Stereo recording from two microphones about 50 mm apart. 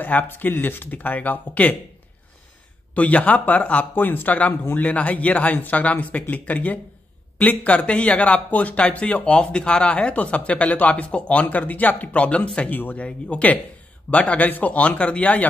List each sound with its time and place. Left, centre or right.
0.0 s speech: left
2.9 s speech: left